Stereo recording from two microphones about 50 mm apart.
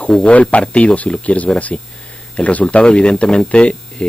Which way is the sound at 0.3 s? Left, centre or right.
Left.